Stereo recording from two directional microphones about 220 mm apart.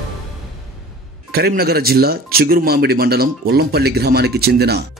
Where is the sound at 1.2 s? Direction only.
45° right (ahead or behind).